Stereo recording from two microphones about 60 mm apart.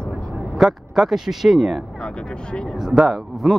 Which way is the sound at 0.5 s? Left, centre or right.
Centre.